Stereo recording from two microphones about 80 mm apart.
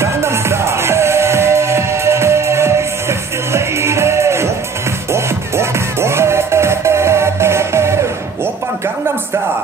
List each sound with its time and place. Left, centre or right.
0.0 s music: right